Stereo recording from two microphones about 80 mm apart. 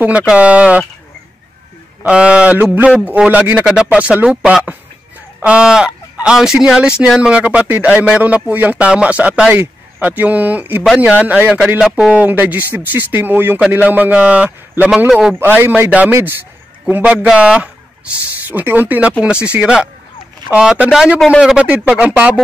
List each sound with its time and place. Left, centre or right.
0.0 s a man's voice: centre
2.0 s a man's voice: centre
11.8 s speech: centre
12.1 s speech: centre
15.0 s a man's voice: centre
15.3 s a man's voice: right
16.9 s a man's voice: centre